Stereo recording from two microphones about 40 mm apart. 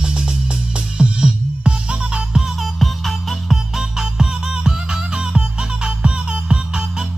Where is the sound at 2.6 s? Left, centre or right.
Centre.